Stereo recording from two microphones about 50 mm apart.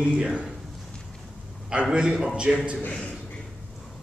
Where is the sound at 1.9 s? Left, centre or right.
Centre.